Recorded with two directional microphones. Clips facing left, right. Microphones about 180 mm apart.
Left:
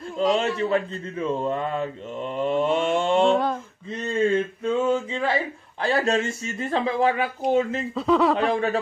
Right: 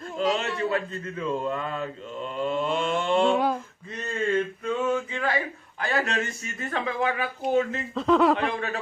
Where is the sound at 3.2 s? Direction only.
5° right (ahead or behind).